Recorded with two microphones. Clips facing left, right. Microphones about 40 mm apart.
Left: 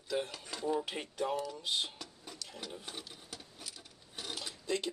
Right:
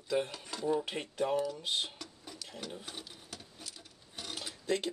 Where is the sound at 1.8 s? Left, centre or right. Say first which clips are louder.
Right 1 dB; centre.